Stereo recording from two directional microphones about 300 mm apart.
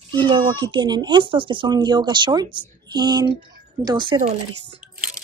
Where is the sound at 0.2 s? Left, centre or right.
Centre.